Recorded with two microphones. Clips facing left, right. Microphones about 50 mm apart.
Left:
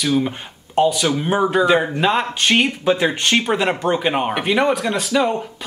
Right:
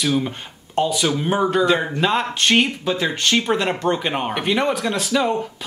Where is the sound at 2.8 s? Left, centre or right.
Centre.